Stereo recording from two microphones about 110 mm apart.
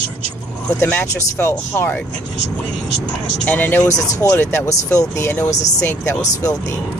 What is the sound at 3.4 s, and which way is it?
Speech, 15° left (ahead or behind).